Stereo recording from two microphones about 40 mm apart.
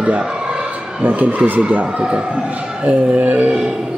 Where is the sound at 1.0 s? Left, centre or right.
Right.